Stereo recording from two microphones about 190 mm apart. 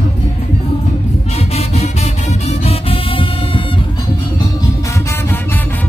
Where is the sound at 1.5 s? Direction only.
35° left (ahead or behind).